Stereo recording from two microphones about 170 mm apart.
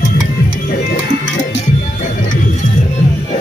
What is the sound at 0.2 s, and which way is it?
Music, 55° left (ahead or behind).